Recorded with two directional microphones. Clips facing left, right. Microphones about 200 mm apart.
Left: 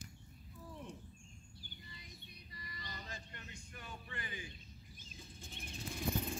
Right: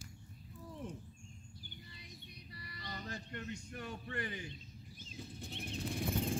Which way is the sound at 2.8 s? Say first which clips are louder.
Right 6 dB; 60° right (ahead or behind).